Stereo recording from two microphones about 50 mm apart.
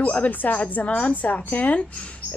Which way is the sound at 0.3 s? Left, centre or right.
Left.